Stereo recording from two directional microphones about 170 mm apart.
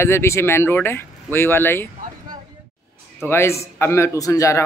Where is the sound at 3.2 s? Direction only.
15° left (ahead or behind).